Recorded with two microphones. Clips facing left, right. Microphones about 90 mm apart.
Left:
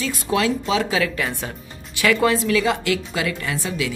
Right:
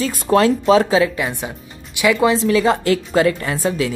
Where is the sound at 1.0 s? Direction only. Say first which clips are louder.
Right 4 dB; 20° right (ahead or behind); by 3.9 s 35° right (ahead or behind).